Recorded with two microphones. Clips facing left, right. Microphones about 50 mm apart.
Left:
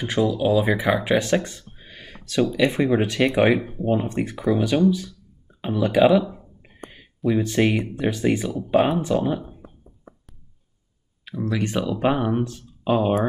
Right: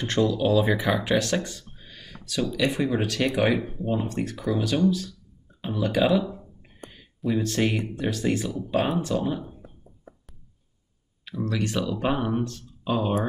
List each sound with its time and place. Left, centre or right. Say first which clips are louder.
0.0 s speech: left 2 dB; centre
0.9 s speech: left 4 dB; centre
3.5 s speech: left 2 dB; centre
3.8 s speech: left 4 dB; left
5.6 s a sound: left 6 dB; left
7.3 s speech: left 4 dB; centre
8.6 s speech: left 7 dB; left
8.9 s speech: left 4 dB; left
11.2 s speech: left 3 dB; centre